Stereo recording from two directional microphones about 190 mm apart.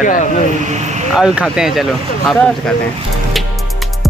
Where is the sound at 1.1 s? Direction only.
5° right (ahead or behind).